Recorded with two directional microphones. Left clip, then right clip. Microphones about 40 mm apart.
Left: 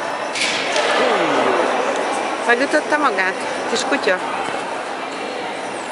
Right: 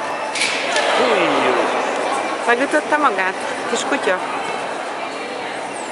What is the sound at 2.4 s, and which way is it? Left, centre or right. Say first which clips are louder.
Speech: left 1 dB; centre.